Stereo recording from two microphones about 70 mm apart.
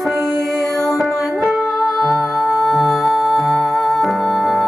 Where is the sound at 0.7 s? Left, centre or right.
Left.